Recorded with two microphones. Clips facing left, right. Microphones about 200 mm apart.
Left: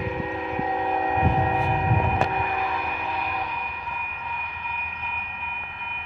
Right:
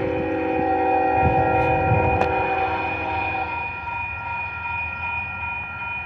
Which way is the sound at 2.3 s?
55° right (ahead or behind).